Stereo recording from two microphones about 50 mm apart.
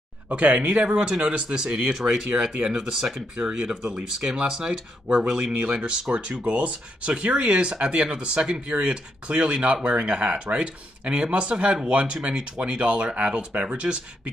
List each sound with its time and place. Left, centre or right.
0.3 s speech: right